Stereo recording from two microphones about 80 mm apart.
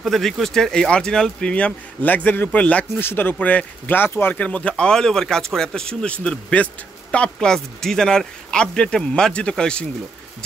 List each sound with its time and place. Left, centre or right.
0.0 s speech: centre; by 4.4 s left
4.4 s speech: centre